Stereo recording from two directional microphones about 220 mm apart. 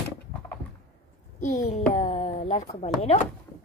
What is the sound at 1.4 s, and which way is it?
Speech, 40° left (ahead or behind).